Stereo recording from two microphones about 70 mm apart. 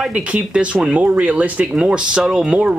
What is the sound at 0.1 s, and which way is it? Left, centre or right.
Speech, centre.